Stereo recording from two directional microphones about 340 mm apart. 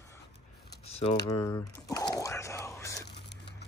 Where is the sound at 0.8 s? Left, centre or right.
Centre.